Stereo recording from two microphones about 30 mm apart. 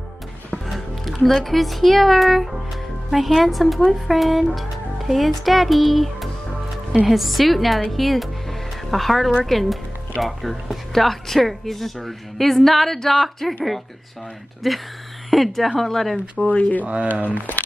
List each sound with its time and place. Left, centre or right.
0.7 s speech: centre
7.9 s music: centre
9.4 s a woman's voice: centre
14.6 s a woman's voice: centre
16.4 s speech: left
16.8 s speech: right